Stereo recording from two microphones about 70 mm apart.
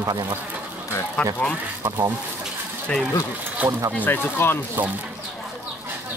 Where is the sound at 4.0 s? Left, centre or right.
Left.